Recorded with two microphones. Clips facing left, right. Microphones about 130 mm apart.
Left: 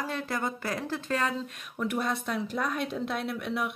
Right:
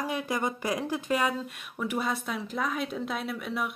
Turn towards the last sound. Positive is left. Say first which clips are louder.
# left 1 dB
turn(degrees=0)  # may be behind; listen again after turning